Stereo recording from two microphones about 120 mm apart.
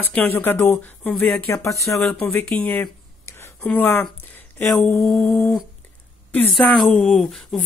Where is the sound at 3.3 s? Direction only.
15° left (ahead or behind).